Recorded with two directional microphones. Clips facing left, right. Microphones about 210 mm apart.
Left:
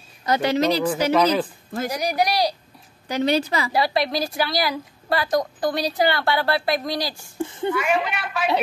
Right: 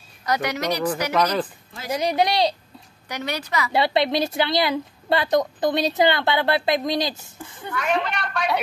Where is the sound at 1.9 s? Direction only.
25° right (ahead or behind).